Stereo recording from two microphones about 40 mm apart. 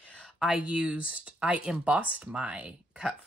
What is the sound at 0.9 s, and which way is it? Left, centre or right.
Speech, right.